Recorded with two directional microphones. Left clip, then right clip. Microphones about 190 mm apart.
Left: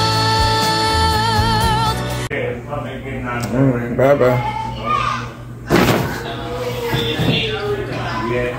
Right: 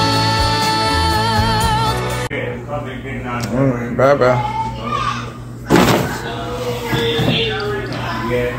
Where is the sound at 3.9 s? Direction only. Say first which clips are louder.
Right 1 dB; 10° left (ahead or behind).